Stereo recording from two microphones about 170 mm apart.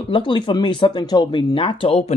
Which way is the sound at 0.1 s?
30° left (ahead or behind).